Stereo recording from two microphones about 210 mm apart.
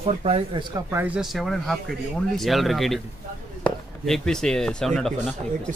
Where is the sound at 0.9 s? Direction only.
10° right (ahead or behind).